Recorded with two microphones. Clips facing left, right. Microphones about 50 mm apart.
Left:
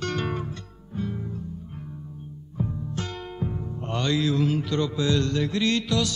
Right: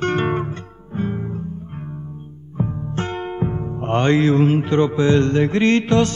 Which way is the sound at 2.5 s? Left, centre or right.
Right.